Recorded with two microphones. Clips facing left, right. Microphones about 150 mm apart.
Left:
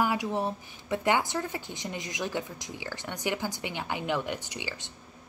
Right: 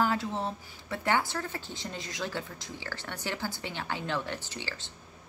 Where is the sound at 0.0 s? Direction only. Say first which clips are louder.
Left 1 dB; 15° left (ahead or behind).